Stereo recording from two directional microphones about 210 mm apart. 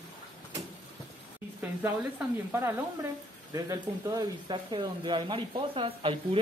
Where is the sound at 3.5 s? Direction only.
15° right (ahead or behind).